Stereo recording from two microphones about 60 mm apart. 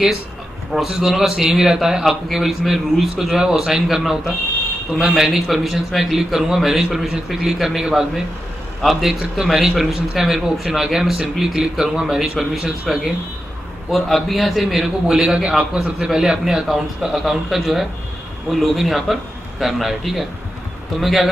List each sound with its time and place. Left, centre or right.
0.8 s a man's voice: centre
9.4 s a man's voice: centre
13.8 s a man's voice: centre